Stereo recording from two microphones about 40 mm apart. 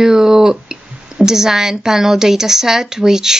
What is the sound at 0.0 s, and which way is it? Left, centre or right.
A woman's voice, centre.